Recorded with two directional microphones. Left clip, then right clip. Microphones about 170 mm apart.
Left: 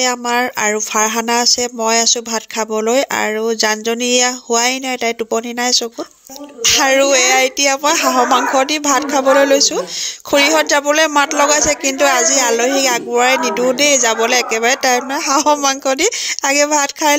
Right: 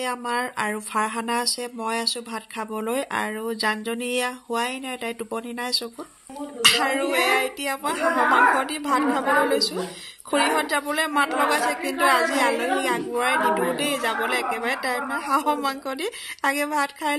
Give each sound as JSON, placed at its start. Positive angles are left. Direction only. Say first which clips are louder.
{"t": 0.0, "sound": "speech", "louder": "left 10 dB", "side_deg": 35}
{"t": 6.6, "sound": "speech", "louder": "left 8 dB", "side_deg": 45}